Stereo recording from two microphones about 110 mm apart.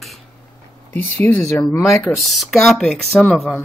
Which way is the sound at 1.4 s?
5° left (ahead or behind).